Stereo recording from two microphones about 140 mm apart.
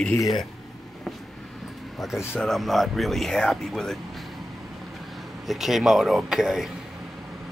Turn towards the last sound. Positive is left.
turn(degrees=-5)  # may be behind; listen again after turning